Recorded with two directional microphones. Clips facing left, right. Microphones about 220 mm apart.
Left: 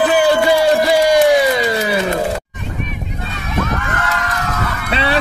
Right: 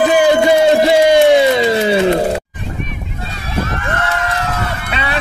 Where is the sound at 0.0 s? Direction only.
20° right (ahead or behind).